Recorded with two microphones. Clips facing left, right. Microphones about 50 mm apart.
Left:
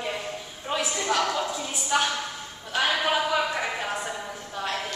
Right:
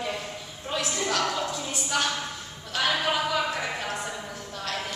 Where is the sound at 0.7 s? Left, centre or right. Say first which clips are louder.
Left 2 dB; centre.